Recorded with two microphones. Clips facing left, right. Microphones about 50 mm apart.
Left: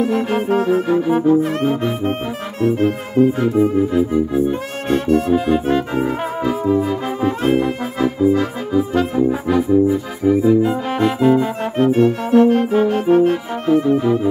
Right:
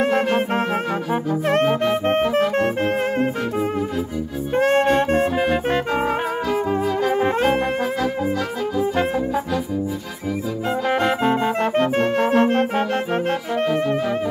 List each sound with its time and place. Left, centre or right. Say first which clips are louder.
0.1 s music: left 2 dB; right
4.6 s brass instrument: right 4 dB; right
10.2 s music: left 13 dB; left
11.8 s music: left 8 dB; right